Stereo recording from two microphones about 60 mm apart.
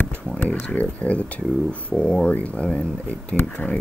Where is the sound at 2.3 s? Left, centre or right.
Left.